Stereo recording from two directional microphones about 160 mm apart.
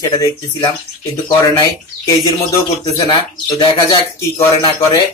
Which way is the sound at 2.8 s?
25° left (ahead or behind).